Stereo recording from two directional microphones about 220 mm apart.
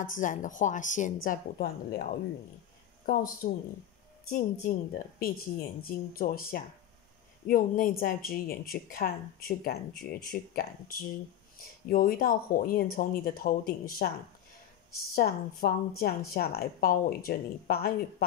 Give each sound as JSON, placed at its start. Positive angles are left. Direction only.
{"t": 0.0, "sound": "a woman's voice", "side_deg": 35}
{"t": 15.1, "sound": "a woman's voice", "side_deg": 45}